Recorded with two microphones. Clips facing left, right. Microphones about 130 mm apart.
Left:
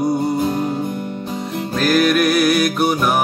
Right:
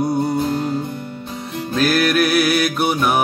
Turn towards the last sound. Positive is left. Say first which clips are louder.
# left 1 dB
turn(degrees=0)  # may be behind; listen again after turning